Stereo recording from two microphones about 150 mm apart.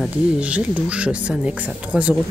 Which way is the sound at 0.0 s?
10° right (ahead or behind).